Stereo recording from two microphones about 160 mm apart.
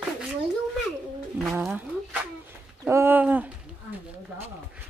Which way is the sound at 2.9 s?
15° right (ahead or behind).